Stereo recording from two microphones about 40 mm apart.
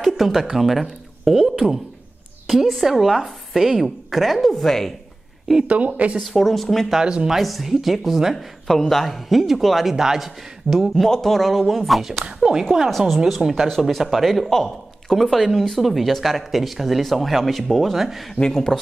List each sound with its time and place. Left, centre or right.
0.0 s a woman's voice: centre
5.7 s a woman's voice: right
6.2 s speech: centre
7.0 s speech: right
7.2 s speech: centre
11.1 s speech: centre
12.4 s speech: centre
13.2 s speech: centre
18.5 s speech: centre